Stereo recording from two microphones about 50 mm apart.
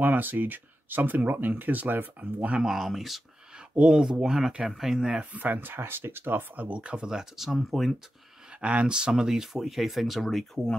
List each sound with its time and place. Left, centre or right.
0.0 s speech: right
2.6 s speech: centre
3.7 s speech: centre
5.2 s speech: right
5.8 s speech: right
6.5 s speech: right
6.8 s speech: right
7.5 s speech: centre
8.5 s speech: right; by 10.7 s centre